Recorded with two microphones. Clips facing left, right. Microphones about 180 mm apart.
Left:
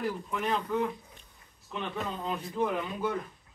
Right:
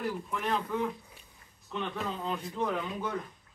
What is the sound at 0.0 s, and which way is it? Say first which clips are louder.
Speech: left 1 dB; centre (ahead or behind).